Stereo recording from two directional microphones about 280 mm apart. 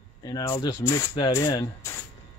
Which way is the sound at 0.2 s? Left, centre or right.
Centre.